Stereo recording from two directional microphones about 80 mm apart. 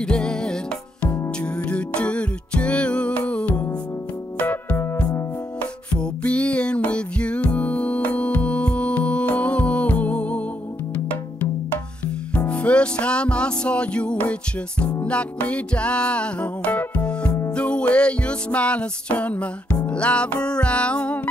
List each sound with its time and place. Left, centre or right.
0.0 s music: centre
4.4 s keyboard: centre
5.6 s music: centre
12.4 s music: centre